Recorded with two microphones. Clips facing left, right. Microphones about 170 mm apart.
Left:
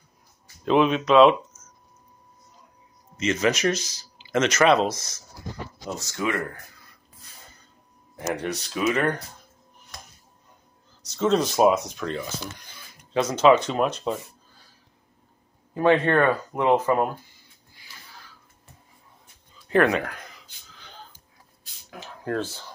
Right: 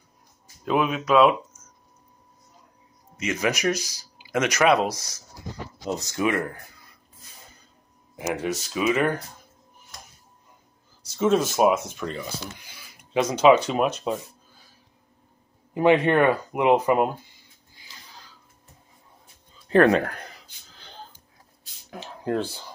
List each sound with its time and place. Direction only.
0.7 s speech: 5° right (ahead or behind)
3.2 s speech: 10° right (ahead or behind)
8.4 s speech: 5° right (ahead or behind)
11.1 s speech: 5° right (ahead or behind)
15.7 s speech: 15° right (ahead or behind)
19.7 s speech: 35° right (ahead or behind)
21.9 s speech: 20° right (ahead or behind)